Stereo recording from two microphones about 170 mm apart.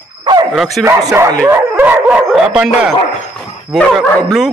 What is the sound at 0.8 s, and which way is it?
Speech, 15° right (ahead or behind).